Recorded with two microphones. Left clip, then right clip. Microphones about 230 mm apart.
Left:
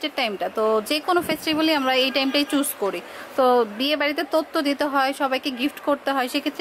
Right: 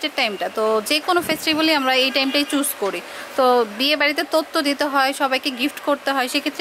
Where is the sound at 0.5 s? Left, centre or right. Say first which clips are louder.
Right 1 dB; left.